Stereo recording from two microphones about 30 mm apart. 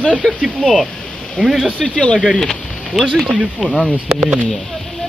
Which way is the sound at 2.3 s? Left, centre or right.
Centre.